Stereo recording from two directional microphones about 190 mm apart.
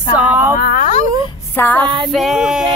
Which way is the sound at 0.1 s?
10° right (ahead or behind).